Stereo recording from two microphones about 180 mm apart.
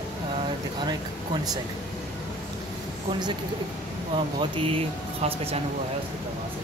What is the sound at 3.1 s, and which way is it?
Speech, 25° right (ahead or behind).